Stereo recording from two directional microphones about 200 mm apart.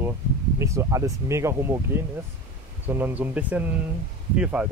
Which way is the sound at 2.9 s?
10° right (ahead or behind).